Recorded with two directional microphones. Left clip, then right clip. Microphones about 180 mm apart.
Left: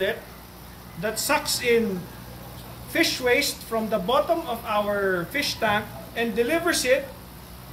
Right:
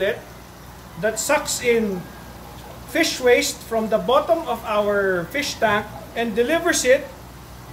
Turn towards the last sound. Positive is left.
turn(degrees=-40)  # may be behind; listen again after turning